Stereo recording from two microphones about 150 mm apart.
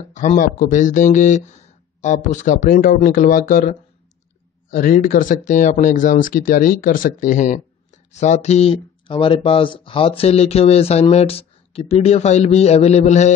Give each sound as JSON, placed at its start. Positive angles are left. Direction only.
{"t": 0.1, "sound": "speech", "side_deg": 60}
{"t": 9.0, "sound": "speech", "side_deg": 35}